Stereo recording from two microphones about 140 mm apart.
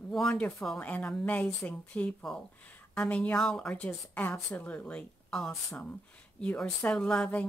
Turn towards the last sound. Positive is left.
turn(degrees=10)  # may be behind; listen again after turning